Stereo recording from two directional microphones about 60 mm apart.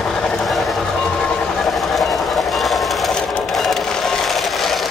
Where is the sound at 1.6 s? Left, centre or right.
Centre.